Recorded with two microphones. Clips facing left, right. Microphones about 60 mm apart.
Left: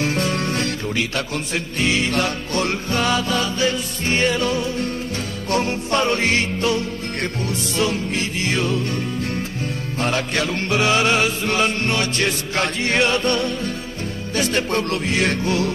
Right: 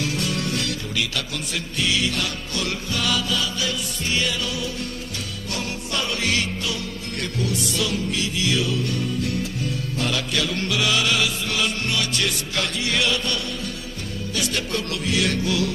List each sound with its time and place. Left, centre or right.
0.0 s music: left